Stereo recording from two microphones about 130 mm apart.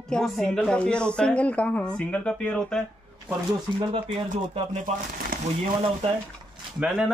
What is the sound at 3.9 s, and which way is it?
Speech, 45° right (ahead or behind).